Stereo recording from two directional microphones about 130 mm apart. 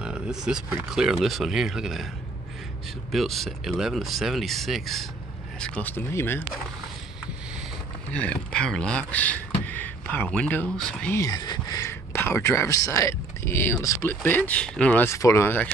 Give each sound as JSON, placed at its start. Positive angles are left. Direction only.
{"t": 0.0, "sound": "a sound", "side_deg": -5}
{"t": 0.8, "sound": "speech", "side_deg": -5}
{"t": 3.1, "sound": "speech", "side_deg": 0}
{"t": 5.6, "sound": "speech", "side_deg": 15}
{"t": 8.1, "sound": "speech", "side_deg": 10}
{"t": 11.1, "sound": "speech", "side_deg": 30}